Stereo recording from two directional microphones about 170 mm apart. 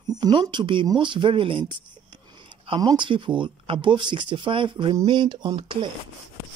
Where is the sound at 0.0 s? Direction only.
25° right (ahead or behind).